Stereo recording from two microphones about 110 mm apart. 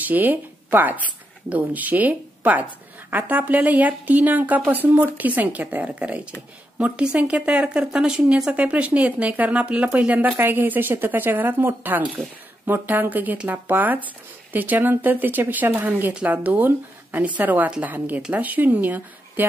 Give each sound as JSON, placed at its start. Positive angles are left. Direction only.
{"t": 0.0, "sound": "speech", "side_deg": -15}